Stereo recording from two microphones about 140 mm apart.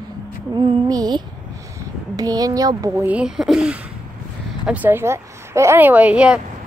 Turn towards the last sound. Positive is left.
turn(degrees=-5)  # may be behind; listen again after turning